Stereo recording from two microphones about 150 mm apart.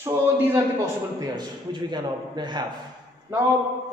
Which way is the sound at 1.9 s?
30° right (ahead or behind).